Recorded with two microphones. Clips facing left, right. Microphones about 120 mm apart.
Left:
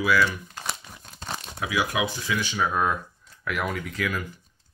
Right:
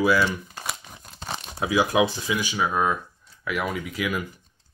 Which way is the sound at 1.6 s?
30° right (ahead or behind).